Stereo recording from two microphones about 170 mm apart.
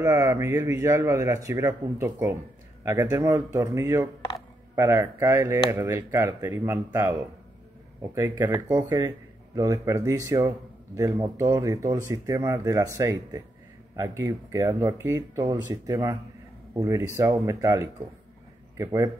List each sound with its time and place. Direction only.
0.0 s speech: 15° right (ahead or behind)